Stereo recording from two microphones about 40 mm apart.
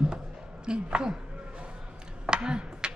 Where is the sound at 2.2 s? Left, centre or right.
Right.